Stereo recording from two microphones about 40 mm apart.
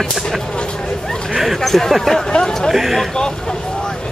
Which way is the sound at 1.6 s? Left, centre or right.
Centre.